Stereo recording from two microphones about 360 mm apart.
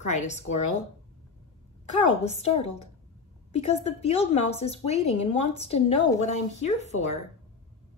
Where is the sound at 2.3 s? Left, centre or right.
Centre.